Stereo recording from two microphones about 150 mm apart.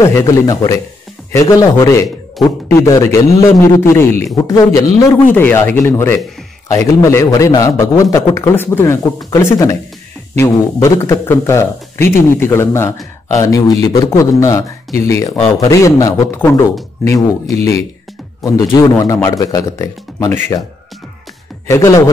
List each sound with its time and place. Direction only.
0.0 s a man's voice: 20° left (ahead or behind)
21.6 s a man's voice: 20° left (ahead or behind)